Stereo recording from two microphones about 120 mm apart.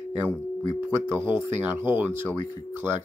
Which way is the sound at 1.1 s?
20° right (ahead or behind).